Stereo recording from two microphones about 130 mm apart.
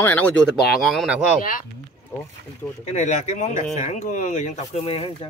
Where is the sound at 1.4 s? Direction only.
90° left.